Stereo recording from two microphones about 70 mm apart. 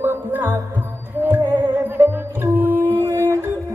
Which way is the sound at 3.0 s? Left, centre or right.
Right.